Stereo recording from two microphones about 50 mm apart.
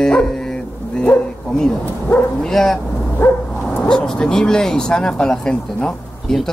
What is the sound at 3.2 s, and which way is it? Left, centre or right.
Bow-wow, left.